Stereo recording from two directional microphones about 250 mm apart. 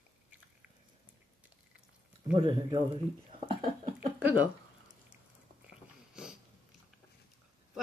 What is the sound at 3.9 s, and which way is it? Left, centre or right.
Speech, centre.